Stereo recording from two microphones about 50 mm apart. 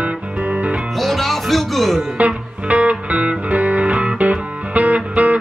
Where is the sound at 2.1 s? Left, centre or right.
Right.